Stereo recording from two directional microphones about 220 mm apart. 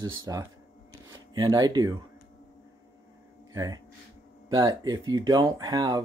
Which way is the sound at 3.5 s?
15° right (ahead or behind).